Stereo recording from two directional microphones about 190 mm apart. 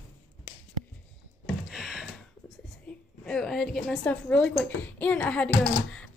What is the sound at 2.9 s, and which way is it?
Speech, 5° left (ahead or behind).